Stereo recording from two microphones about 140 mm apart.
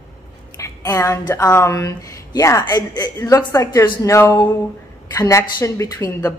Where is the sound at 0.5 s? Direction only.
25° left (ahead or behind).